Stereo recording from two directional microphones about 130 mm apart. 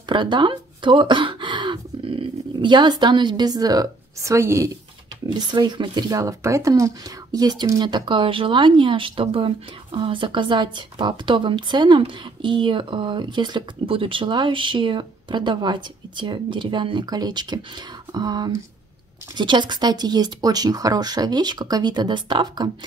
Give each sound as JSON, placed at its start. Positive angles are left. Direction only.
{"t": 0.1, "sound": "speech", "side_deg": -35}
{"t": 5.3, "sound": "speech", "side_deg": -35}